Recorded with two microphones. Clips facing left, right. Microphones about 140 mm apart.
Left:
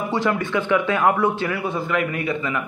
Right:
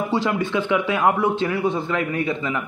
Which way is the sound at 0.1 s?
15° right (ahead or behind).